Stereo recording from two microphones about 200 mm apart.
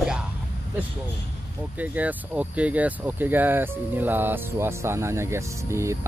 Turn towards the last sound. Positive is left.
turn(degrees=-15)  # may be behind; listen again after turning